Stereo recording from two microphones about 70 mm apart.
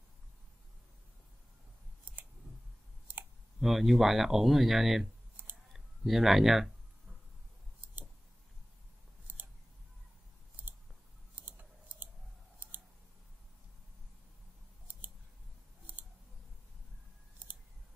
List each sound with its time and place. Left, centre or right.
3.6 s speech: centre
9.3 s scissors: right
11.3 s a sound: right